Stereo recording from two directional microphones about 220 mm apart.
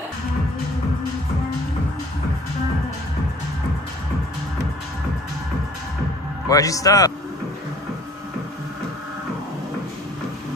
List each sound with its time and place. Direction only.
6.5 s a man's voice: 15° left (ahead or behind)